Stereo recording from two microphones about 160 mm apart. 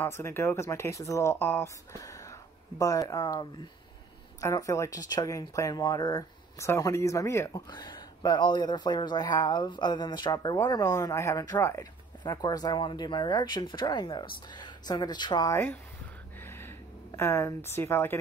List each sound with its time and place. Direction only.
0.0 s speech: 15° left (ahead or behind)
15.5 s speech: 15° left (ahead or behind)
16.4 s a sound: 15° left (ahead or behind)